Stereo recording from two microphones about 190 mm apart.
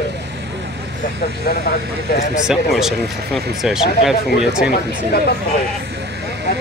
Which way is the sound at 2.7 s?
Centre (ahead or behind).